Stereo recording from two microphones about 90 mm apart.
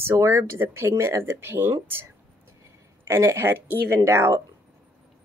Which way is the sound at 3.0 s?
30° right (ahead or behind).